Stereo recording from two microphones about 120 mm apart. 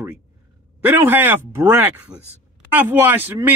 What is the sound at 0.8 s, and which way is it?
A man's voice, 15° right (ahead or behind).